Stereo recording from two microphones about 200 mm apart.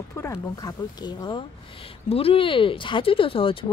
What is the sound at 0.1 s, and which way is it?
Speech, 15° left (ahead or behind).